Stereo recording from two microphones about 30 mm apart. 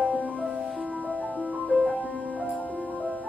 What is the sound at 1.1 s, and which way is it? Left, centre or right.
Music, left.